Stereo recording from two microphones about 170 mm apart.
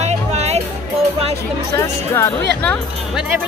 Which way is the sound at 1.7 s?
15° left (ahead or behind).